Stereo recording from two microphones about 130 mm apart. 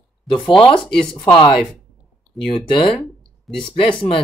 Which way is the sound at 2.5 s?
45° left (ahead or behind).